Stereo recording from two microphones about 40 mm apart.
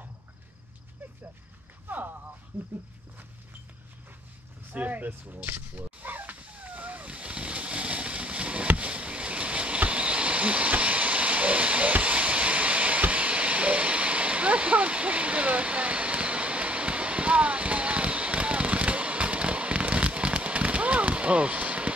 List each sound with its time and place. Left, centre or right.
1.9 s clip-clop: right
4.7 s speech: right
6.0 s splash: right
8.7 s a sound: right